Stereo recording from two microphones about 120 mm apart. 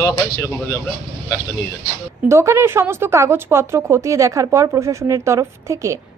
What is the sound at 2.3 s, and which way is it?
A woman's voice, 25° right (ahead or behind).